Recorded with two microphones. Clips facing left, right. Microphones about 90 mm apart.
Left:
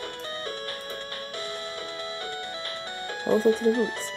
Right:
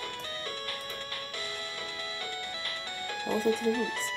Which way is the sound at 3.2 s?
30° left (ahead or behind).